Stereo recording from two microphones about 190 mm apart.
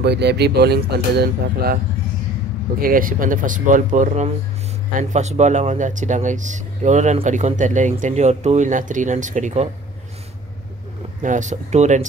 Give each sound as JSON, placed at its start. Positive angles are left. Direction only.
{"t": 0.0, "sound": "speech", "side_deg": -60}
{"t": 2.8, "sound": "speech", "side_deg": -45}
{"t": 11.2, "sound": "speech", "side_deg": -40}